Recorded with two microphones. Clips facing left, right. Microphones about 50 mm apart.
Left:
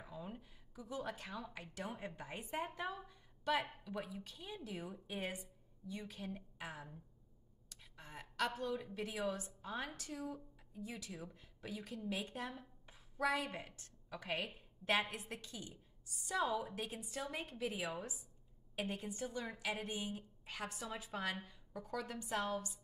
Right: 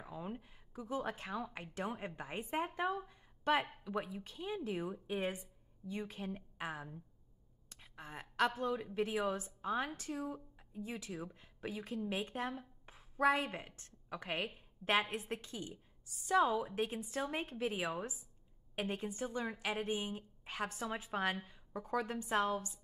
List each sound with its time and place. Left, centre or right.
0.0 s a woman's voice: right
3.1 s a sound: right
3.8 s a woman's voice: right